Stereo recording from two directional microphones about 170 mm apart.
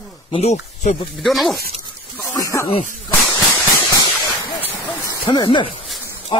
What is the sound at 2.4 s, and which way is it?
Snake, 20° left (ahead or behind).